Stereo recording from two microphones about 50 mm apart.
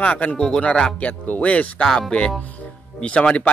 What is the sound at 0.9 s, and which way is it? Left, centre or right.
Speech, left.